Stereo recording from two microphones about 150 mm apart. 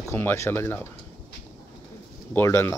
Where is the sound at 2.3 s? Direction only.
15° left (ahead or behind).